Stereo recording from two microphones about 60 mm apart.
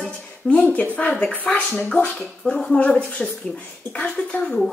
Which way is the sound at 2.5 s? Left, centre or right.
Centre.